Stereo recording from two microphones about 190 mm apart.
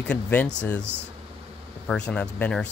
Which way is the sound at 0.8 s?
65° left (ahead or behind).